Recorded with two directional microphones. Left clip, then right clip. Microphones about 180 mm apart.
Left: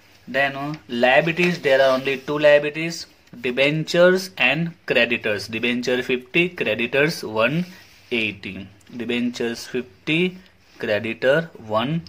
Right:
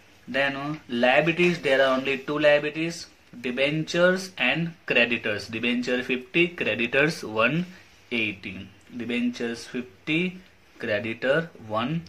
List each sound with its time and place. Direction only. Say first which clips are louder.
0.3 s speech: left 4 dB; 40° left (ahead or behind)
8.1 s speech: left 4 dB; 50° left (ahead or behind)